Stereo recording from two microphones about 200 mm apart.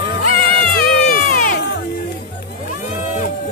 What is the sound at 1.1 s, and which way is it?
Music, 45° left (ahead or behind).